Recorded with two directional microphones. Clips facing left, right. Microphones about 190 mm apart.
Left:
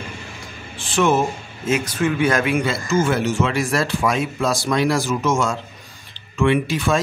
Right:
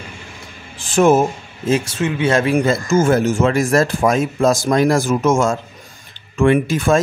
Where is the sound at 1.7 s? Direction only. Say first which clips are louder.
Right 2 dB; 25° right (ahead or behind).